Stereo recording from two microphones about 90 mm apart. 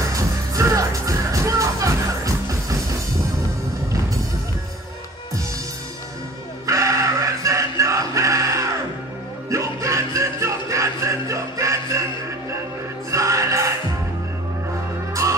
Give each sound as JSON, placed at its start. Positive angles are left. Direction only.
{"t": 0.1, "sound": "music", "side_deg": -35}
{"t": 6.6, "sound": "music", "side_deg": -35}
{"t": 13.1, "sound": "music", "side_deg": -35}